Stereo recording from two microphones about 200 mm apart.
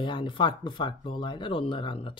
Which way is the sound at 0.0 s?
25° left (ahead or behind).